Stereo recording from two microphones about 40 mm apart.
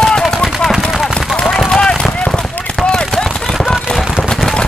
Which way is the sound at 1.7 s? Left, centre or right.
Left.